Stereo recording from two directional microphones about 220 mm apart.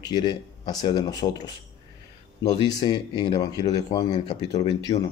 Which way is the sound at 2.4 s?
15° left (ahead or behind).